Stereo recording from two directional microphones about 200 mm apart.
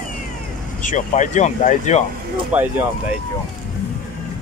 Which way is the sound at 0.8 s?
40° left (ahead or behind).